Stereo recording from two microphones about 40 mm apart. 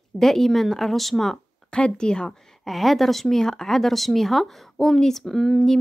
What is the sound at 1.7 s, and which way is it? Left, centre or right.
Speech, left.